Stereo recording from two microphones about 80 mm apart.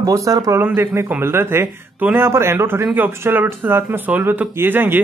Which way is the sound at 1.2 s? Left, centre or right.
Right.